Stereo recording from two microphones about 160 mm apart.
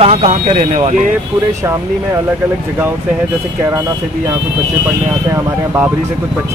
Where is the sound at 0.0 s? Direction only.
40° right (ahead or behind).